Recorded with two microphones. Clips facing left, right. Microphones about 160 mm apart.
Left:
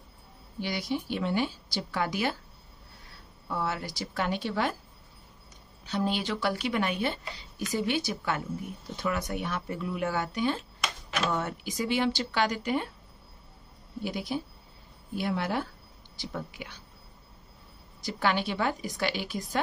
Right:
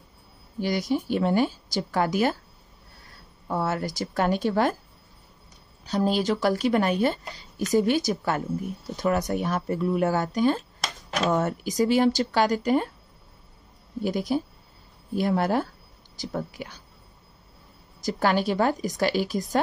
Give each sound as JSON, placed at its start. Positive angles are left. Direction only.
{"t": 0.6, "sound": "a woman's voice", "side_deg": -45}
{"t": 3.4, "sound": "a woman's voice", "side_deg": -45}
{"t": 5.9, "sound": "speech", "side_deg": -40}
{"t": 14.0, "sound": "a woman's voice", "side_deg": -45}
{"t": 18.0, "sound": "speech", "side_deg": -40}